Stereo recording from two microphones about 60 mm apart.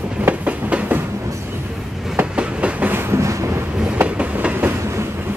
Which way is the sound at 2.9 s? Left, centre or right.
Right.